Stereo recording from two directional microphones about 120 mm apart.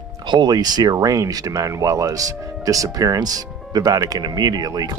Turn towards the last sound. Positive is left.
turn(degrees=-35)  # may be behind; listen again after turning